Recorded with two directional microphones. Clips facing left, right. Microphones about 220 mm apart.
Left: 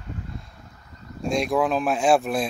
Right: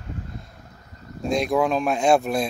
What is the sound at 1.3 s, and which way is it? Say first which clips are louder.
Speech: right 1 dB; centre (ahead or behind).